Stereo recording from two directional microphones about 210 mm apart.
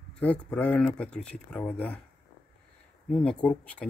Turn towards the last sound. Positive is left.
turn(degrees=5)  # may be behind; listen again after turning